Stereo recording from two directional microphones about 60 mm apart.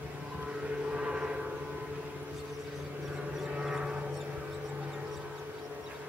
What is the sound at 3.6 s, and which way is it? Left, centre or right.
Vehicle, centre.